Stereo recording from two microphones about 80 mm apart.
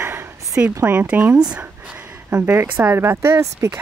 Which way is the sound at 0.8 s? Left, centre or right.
Centre.